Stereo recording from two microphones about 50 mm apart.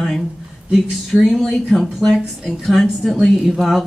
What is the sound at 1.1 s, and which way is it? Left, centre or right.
A woman's voice, centre.